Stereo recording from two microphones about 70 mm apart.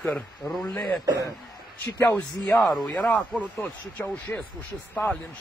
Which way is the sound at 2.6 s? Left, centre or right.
Centre.